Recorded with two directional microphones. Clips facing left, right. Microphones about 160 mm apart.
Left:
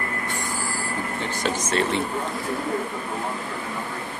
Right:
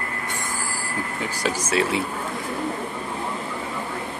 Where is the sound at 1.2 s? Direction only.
10° right (ahead or behind).